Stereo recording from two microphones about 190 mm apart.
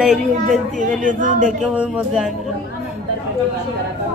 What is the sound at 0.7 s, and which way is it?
Speech, 45° right (ahead or behind).